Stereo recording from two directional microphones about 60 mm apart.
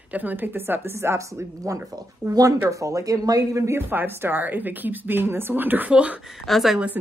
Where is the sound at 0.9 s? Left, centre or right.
Right.